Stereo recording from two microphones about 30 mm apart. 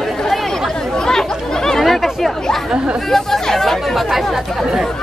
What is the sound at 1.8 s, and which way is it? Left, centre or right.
Chatter, centre.